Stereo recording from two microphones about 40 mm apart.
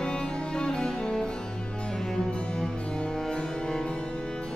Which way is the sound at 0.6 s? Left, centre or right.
Left.